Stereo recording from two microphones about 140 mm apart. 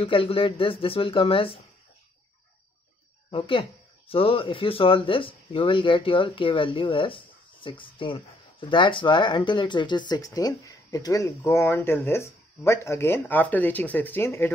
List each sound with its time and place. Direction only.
0.0 s speech: 40° left (ahead or behind)
3.3 s speech: 35° left (ahead or behind); by 14.5 s 15° left (ahead or behind)